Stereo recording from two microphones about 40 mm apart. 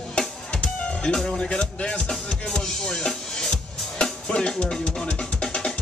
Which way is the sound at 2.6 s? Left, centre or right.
Centre.